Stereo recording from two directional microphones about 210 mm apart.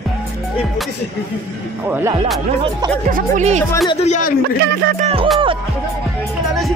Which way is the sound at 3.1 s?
35° right (ahead or behind).